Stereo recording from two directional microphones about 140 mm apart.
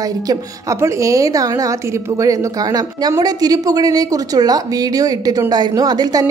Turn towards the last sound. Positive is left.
turn(degrees=-30)  # may be behind; listen again after turning